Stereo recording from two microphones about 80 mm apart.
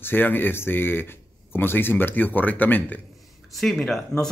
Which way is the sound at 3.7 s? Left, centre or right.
Centre.